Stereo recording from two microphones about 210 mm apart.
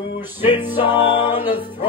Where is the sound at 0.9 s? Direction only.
20° left (ahead or behind).